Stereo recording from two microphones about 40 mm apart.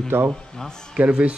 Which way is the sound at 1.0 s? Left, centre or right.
Right.